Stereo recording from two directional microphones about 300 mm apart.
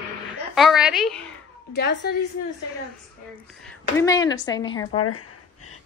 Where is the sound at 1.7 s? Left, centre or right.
Left.